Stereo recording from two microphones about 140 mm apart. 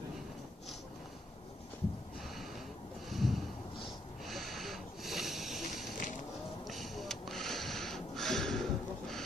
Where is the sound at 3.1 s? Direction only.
Centre (ahead or behind).